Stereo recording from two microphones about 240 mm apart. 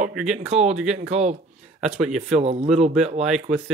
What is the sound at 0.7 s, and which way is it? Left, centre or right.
Speech, centre.